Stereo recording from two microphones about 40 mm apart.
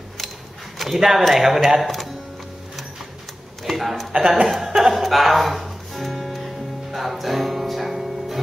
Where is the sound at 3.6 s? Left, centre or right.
Centre.